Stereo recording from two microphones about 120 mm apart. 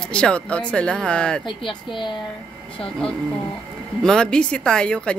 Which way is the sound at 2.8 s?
5° left (ahead or behind).